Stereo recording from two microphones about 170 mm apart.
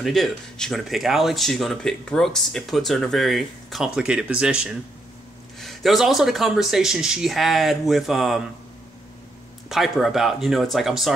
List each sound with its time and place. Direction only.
0.0 s speech: centre (ahead or behind)
9.7 s speech: centre (ahead or behind)